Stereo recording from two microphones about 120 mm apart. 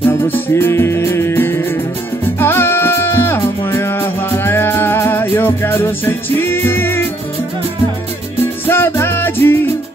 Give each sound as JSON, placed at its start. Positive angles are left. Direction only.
{"t": 0.1, "sound": "music", "side_deg": 20}
{"t": 8.6, "sound": "music", "side_deg": 20}